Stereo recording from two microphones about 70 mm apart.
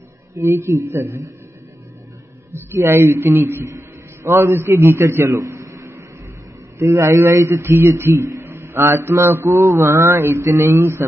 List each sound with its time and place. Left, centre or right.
0.4 s a man's voice: right
2.5 s a man's voice: right
5.6 s a sound: right
6.8 s a man's voice: right